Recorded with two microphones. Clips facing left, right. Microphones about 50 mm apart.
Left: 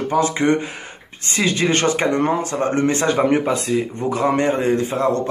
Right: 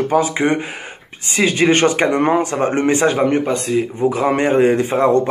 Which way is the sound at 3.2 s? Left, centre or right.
Centre.